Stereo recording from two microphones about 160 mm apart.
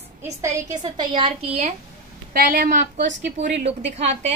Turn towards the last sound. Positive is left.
turn(degrees=-45)  # may be behind; listen again after turning